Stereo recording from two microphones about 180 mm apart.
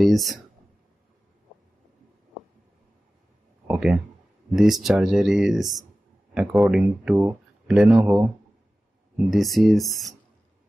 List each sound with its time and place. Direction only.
0.0 s speech: centre (ahead or behind)
3.6 s speech: 5° right (ahead or behind)
8.0 s speech: 15° right (ahead or behind)
9.3 s speech: centre (ahead or behind)